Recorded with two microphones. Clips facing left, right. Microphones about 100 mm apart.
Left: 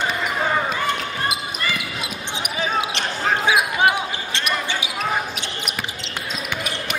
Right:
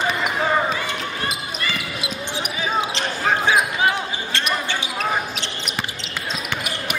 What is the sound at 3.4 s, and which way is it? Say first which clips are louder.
Basketball bounce: left 3 dB; 10° left (ahead or behind).